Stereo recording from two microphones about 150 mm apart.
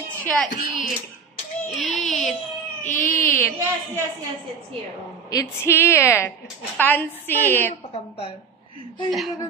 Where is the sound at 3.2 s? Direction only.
15° left (ahead or behind).